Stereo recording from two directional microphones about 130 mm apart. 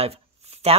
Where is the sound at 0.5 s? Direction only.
55° right (ahead or behind).